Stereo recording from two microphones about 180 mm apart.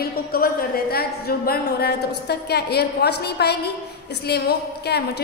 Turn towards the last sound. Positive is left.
turn(degrees=65)  # may be behind; listen again after turning